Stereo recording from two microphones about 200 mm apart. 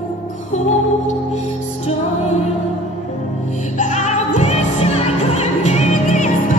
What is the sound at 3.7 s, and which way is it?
Music, 35° left (ahead or behind).